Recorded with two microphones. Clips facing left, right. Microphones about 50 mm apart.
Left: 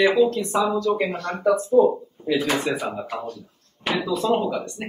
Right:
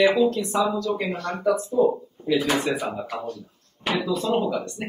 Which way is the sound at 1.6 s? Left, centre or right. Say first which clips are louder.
Left 8 dB; left.